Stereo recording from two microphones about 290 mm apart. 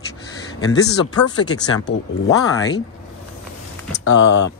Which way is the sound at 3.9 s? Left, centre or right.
Left.